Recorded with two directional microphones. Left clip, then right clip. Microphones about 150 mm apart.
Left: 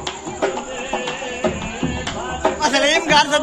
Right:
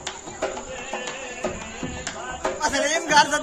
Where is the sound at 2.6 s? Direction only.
90° right.